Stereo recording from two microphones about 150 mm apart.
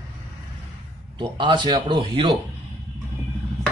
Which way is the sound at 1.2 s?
30° right (ahead or behind).